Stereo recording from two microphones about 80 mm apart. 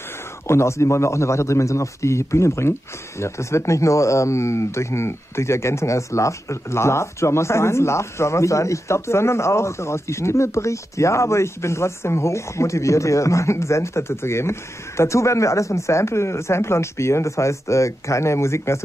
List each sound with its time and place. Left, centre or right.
0.5 s speech: left